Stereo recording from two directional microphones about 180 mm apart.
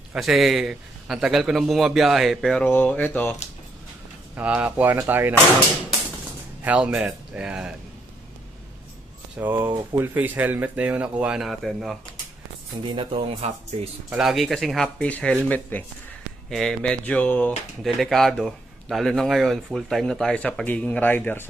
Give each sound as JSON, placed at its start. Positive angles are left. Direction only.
{"t": 0.1, "sound": "speech", "side_deg": 0}
{"t": 4.4, "sound": "speech", "side_deg": -10}
{"t": 6.6, "sound": "speech", "side_deg": -5}
{"t": 9.4, "sound": "speech", "side_deg": -10}
{"t": 12.8, "sound": "speech", "side_deg": -30}
{"t": 14.1, "sound": "speech", "side_deg": 0}